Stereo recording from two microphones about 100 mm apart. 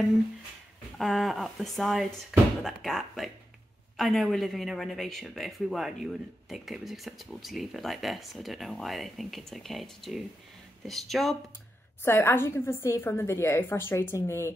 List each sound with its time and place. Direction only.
0.9 s speech: centre (ahead or behind)
12.0 s a woman's voice: 25° left (ahead or behind)